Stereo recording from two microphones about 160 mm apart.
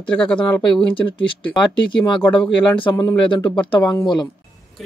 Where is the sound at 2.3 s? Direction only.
5° left (ahead or behind).